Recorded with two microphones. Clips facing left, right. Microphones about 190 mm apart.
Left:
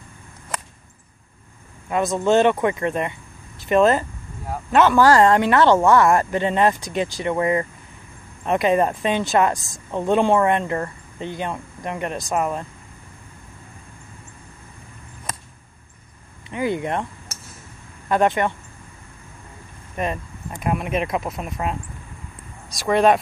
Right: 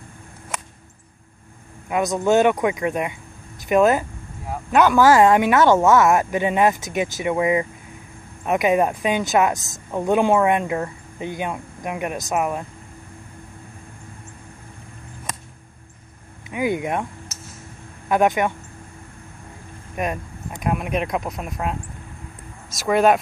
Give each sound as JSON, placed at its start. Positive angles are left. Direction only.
{"t": 2.1, "sound": "speech", "side_deg": -5}
{"t": 7.2, "sound": "speech", "side_deg": -5}
{"t": 15.3, "sound": "a sound", "side_deg": 0}
{"t": 16.4, "sound": "speech", "side_deg": -10}
{"t": 18.0, "sound": "speech", "side_deg": -10}
{"t": 20.0, "sound": "speech", "side_deg": 0}
{"t": 22.8, "sound": "speech", "side_deg": -5}